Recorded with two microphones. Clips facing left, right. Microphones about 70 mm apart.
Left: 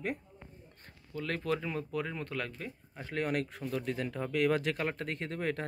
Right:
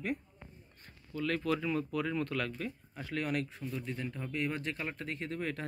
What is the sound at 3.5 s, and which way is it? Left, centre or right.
Speech, left.